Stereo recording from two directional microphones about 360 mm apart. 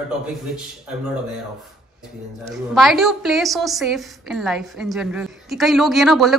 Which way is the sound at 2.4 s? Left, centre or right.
Centre.